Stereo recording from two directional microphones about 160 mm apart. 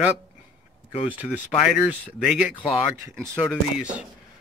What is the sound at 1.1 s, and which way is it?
Speech, 10° right (ahead or behind).